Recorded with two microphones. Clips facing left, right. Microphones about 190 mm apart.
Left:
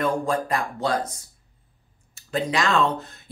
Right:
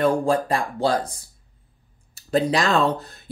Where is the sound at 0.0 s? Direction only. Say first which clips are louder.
Right 4 dB; 30° right (ahead or behind).